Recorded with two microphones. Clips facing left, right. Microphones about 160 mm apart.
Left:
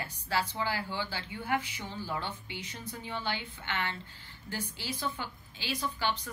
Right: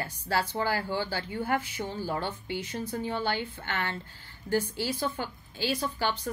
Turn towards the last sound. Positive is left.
turn(degrees=-40)  # may be behind; listen again after turning